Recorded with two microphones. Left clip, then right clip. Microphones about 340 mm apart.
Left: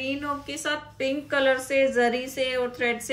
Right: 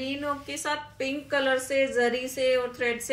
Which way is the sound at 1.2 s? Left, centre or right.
Centre.